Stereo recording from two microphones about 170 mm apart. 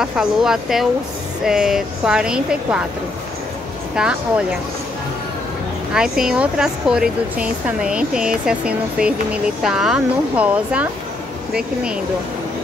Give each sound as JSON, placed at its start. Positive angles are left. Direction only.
{"t": 0.0, "sound": "speech", "side_deg": -5}
{"t": 3.9, "sound": "a woman's voice", "side_deg": -5}
{"t": 5.9, "sound": "speech", "side_deg": -5}